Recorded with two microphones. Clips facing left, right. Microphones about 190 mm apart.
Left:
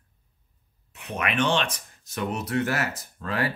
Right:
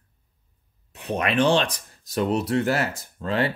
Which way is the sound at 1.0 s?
35° right (ahead or behind).